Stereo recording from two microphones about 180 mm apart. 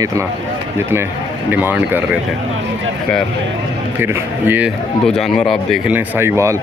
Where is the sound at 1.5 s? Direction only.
10° right (ahead or behind).